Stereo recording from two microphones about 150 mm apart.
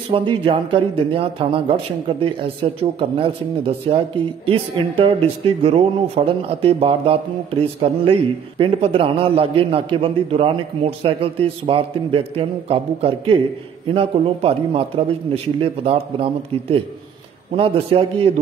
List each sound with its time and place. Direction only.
0.1 s speech: 35° right (ahead or behind)